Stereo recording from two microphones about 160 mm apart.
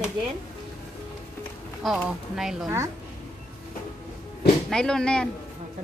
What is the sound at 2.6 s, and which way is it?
Speech, 15° right (ahead or behind).